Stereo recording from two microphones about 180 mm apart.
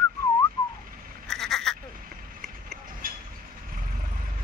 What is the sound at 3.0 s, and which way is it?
Vehicle, 50° right (ahead or behind).